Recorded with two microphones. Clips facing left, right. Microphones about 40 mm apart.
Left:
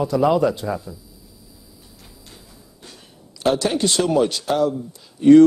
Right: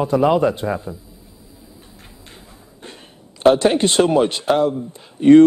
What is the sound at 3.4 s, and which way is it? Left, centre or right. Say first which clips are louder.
Speech: right 6 dB; right.